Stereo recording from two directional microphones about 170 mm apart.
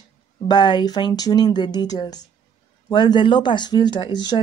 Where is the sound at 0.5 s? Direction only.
25° left (ahead or behind).